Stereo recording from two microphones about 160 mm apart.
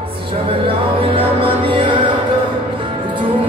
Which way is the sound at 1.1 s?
35° right (ahead or behind).